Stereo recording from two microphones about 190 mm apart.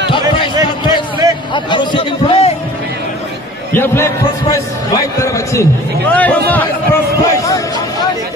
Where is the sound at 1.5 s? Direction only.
25° left (ahead or behind).